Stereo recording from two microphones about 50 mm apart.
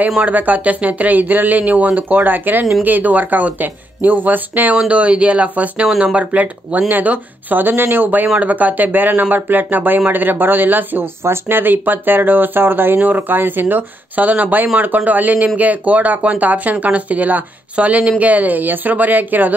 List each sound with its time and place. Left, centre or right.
0.2 s speech: right
4.7 s speech: right